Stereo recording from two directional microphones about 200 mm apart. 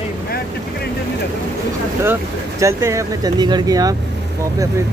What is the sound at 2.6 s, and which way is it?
Speech, 15° right (ahead or behind).